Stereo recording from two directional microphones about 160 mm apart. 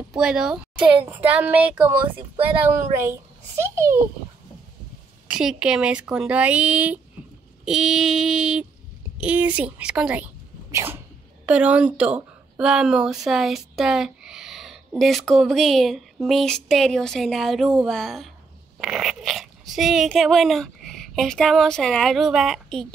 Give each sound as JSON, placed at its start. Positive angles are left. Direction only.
{"t": 0.1, "sound": "speech", "side_deg": -5}
{"t": 2.0, "sound": "speech", "side_deg": -35}
{"t": 2.6, "sound": "speech", "side_deg": -15}
{"t": 5.3, "sound": "speech", "side_deg": -5}
{"t": 10.7, "sound": "a sound", "side_deg": -15}
{"t": 11.4, "sound": "speech", "side_deg": -5}